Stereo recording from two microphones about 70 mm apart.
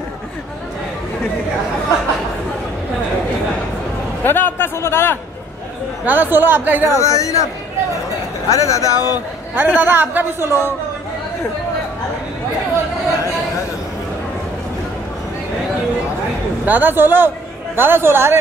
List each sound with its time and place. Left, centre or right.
4.2 s a sound: left
6.0 s a man's voice: right
6.9 s speech: left
8.5 s speech: left
9.6 s a man's voice: right
16.6 s a man's voice: right